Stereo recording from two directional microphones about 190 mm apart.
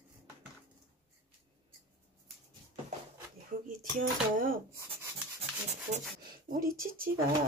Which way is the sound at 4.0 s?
45° right (ahead or behind).